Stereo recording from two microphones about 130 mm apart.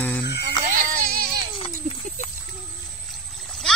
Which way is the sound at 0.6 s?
90° right.